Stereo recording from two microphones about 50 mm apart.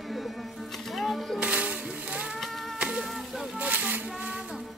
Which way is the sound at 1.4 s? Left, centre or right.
Right.